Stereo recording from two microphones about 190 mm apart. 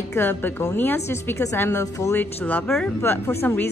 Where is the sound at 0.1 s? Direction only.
10° left (ahead or behind).